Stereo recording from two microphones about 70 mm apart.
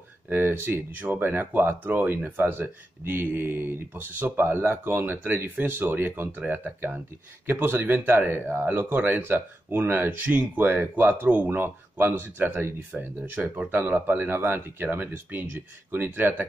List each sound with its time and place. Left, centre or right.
0.3 s speech: right